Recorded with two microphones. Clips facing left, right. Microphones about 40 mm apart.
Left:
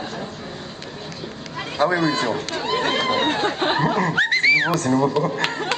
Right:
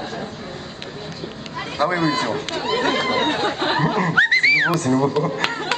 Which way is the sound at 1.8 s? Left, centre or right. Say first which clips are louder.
Even; centre.